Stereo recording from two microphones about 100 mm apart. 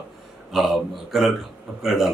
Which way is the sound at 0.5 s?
5° right (ahead or behind).